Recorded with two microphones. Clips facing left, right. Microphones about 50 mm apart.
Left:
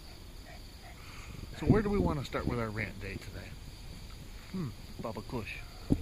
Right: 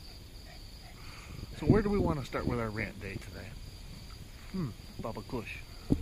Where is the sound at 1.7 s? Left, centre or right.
Centre.